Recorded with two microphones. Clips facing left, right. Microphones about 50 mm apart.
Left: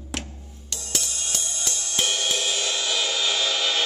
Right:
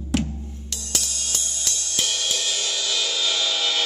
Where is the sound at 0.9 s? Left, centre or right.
Centre.